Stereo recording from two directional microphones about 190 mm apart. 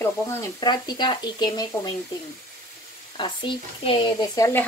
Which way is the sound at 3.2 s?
25° left (ahead or behind).